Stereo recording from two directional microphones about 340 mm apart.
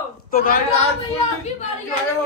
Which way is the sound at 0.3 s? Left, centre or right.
Left.